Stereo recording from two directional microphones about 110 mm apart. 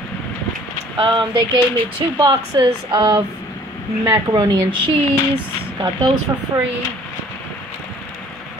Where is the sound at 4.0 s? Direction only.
30° right (ahead or behind).